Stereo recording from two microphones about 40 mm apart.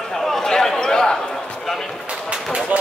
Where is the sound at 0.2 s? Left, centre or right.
Centre.